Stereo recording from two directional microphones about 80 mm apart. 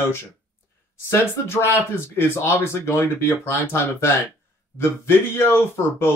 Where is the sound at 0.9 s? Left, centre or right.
Left.